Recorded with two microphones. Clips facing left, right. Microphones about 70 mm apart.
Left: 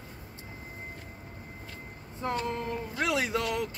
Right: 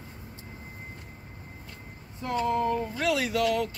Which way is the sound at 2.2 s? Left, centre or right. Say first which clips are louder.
Right 5 dB; left.